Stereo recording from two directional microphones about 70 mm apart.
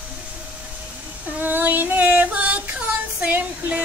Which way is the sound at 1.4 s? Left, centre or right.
Right.